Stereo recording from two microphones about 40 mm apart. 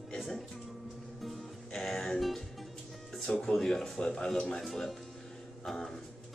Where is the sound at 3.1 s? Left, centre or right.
Centre.